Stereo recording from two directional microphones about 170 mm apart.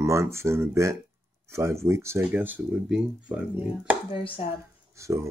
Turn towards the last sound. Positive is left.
turn(degrees=-15)  # may be behind; listen again after turning